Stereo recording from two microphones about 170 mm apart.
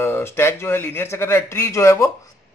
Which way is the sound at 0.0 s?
15° left (ahead or behind).